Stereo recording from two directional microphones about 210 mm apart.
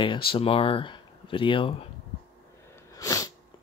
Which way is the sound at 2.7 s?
15° left (ahead or behind).